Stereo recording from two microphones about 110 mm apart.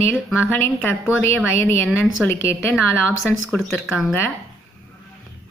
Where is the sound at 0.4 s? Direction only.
20° left (ahead or behind).